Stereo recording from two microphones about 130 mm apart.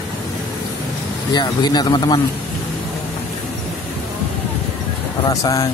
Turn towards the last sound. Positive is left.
turn(degrees=25)  # may be behind; listen again after turning